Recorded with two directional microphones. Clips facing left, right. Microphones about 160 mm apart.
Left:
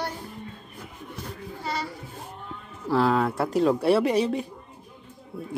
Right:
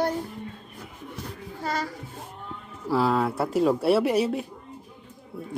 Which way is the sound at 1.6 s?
45° right (ahead or behind).